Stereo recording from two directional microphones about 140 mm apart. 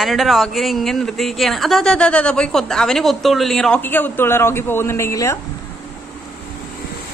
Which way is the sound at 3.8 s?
15° left (ahead or behind).